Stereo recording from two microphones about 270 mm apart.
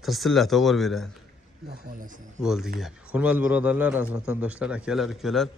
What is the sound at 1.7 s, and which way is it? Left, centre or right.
Speech, right.